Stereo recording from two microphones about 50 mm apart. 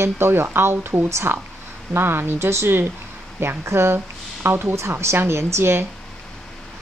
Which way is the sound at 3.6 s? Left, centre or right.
Right.